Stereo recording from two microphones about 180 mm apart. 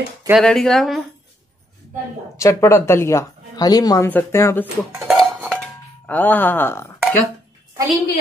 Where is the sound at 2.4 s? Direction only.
15° left (ahead or behind).